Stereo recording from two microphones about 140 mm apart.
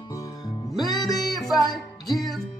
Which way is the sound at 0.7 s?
Centre (ahead or behind).